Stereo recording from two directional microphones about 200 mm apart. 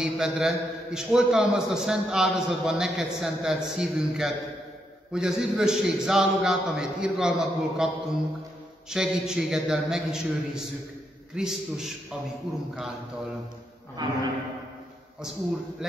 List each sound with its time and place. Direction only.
0.0 s a man's voice: 5° right (ahead or behind)
14.0 s a man's voice: 20° right (ahead or behind)